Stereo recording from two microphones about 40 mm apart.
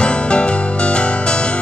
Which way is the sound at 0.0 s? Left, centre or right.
Left.